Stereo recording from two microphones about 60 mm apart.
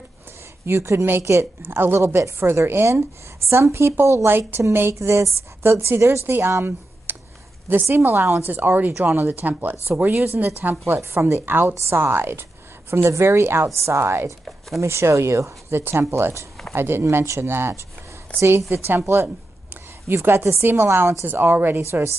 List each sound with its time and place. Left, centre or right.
0.7 s a woman's voice: right
1.6 s speech: right
2.1 s a woman's voice: right
4.3 s speech: right
5.0 s a woman's voice: right
11.0 s a woman's voice: right
11.4 s a woman's voice: right
15.8 s speech: right
17.0 s a woman's voice: right